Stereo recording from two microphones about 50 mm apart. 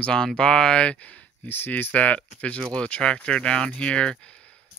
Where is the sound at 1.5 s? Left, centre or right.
Left.